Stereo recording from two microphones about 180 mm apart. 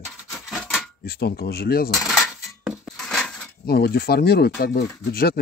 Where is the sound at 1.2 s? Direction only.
60° left (ahead or behind).